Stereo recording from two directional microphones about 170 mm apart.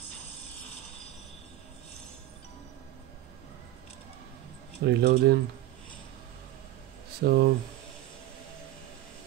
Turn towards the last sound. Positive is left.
turn(degrees=-65)  # may be behind; listen again after turning